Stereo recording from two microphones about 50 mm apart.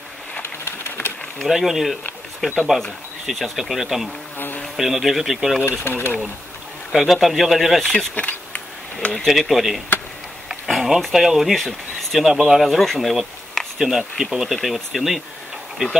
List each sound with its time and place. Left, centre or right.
0.4 s a sound: left
1.4 s speech: centre
5.7 s speech: left
7.0 s speech: centre
7.8 s speech: centre
8.1 s bee: left
9.3 s speech: centre